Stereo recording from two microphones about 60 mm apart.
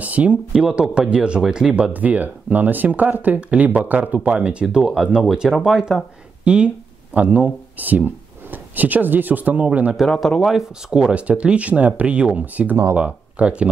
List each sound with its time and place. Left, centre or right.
0.0 s a sound: right
0.5 s speech: centre
1.7 s speech: right; by 5.9 s centre
6.4 s speech: centre
10.0 s a man's voice: centre
10.5 s speech: centre